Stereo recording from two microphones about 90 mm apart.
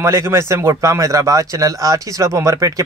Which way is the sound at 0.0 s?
30° right (ahead or behind).